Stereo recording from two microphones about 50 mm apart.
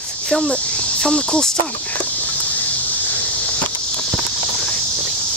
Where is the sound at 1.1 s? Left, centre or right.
Centre.